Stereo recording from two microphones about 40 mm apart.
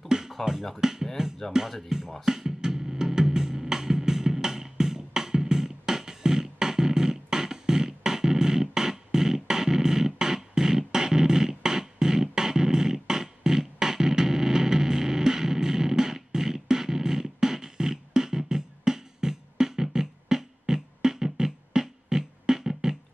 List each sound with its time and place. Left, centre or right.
0.1 s music: centre
1.5 s speech: centre
1.9 s music: centre